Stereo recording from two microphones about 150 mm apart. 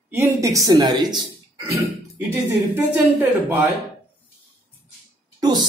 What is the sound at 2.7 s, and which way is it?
A woman's voice, 15° right (ahead or behind).